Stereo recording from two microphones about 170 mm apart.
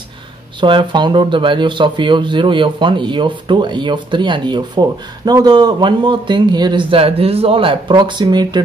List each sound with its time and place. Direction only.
0.6 s speech: 30° right (ahead or behind)